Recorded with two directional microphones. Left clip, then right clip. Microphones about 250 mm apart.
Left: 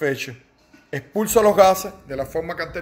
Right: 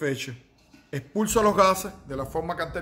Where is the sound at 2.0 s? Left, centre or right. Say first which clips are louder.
Left 5 dB; right.